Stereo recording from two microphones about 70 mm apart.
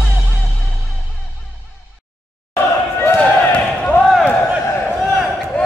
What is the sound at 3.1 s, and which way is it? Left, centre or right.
Basketball bounce, left.